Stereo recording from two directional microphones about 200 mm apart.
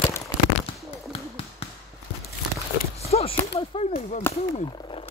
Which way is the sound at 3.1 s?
30° left (ahead or behind).